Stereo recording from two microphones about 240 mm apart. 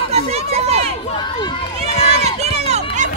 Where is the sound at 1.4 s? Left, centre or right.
Left.